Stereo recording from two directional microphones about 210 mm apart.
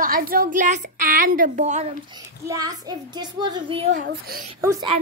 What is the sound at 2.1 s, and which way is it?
A child's voice, 15° right (ahead or behind).